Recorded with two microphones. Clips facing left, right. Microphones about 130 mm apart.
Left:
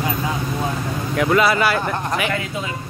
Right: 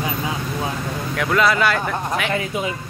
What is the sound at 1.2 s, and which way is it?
Speech, 5° left (ahead or behind).